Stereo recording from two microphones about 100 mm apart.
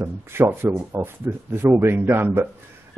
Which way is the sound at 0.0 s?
25° right (ahead or behind).